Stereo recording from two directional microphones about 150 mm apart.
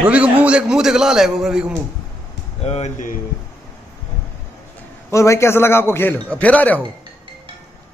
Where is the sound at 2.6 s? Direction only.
45° left (ahead or behind).